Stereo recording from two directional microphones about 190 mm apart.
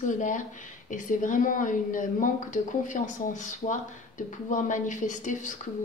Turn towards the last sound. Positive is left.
turn(degrees=40)  # may be behind; listen again after turning